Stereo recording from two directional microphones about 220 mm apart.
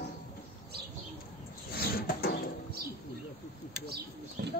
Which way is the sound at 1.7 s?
45° left (ahead or behind).